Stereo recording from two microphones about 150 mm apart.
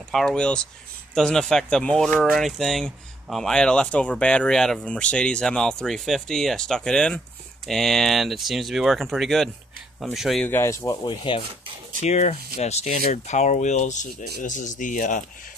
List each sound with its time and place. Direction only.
0.1 s speech: centre (ahead or behind)
10.4 s speech: 15° left (ahead or behind)
11.1 s speech: 35° left (ahead or behind)
12.0 s speech: 50° left (ahead or behind)